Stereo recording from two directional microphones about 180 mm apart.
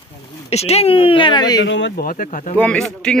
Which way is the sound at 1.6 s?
90° left.